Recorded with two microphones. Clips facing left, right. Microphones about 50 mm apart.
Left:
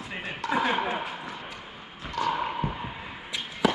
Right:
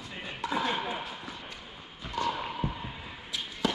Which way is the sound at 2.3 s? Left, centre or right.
Left.